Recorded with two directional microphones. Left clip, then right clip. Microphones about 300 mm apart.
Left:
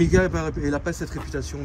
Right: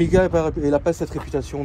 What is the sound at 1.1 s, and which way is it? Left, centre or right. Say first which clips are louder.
Speech: right 6 dB; centre.